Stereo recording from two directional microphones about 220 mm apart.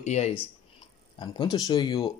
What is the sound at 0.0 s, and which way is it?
Speech, 30° left (ahead or behind).